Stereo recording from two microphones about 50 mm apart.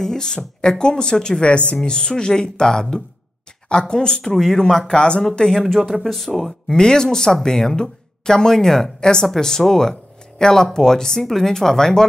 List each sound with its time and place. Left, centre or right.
0.0 s speech: centre
5.8 s speech: centre